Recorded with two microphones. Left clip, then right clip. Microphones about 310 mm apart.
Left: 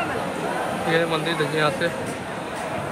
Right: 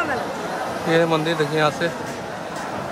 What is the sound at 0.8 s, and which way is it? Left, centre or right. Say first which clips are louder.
Speech: right 4 dB; centre.